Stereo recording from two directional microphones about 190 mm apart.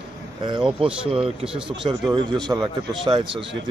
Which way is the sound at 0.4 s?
25° right (ahead or behind).